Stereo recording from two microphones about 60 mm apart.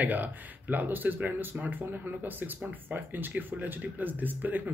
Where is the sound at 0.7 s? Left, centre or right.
Right.